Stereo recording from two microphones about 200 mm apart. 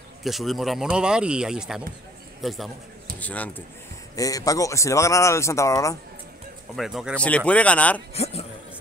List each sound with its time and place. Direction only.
0.2 s speech: centre (ahead or behind); by 5.9 s 15° left (ahead or behind)
6.7 s speech: centre (ahead or behind)
8.1 s a man's voice: 30° left (ahead or behind)